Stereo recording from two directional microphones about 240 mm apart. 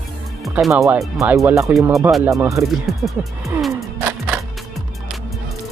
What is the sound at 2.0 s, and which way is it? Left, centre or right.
Speech, centre.